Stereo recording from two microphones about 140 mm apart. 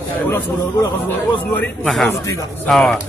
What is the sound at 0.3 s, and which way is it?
A man's voice, 15° left (ahead or behind).